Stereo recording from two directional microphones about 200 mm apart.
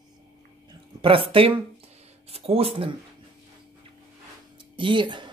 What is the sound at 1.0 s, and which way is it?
Speech, 25° right (ahead or behind).